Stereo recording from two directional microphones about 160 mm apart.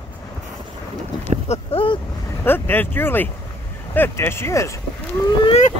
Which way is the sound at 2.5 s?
15° left (ahead or behind).